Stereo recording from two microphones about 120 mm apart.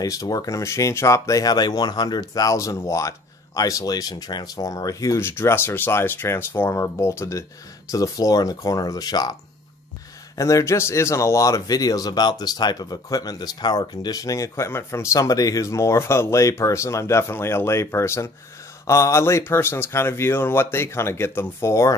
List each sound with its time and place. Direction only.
0.0 s speech: 30° left (ahead or behind)